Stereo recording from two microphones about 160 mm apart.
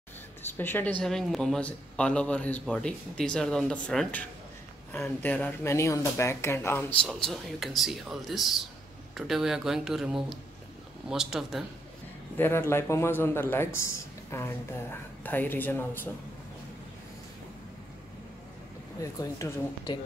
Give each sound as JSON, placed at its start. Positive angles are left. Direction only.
{"t": 0.6, "sound": "a man's voice", "side_deg": 10}
{"t": 12.4, "sound": "speech", "side_deg": 15}
{"t": 18.9, "sound": "speech", "side_deg": 20}